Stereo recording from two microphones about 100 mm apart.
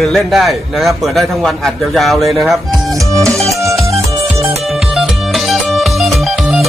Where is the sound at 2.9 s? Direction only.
35° right (ahead or behind).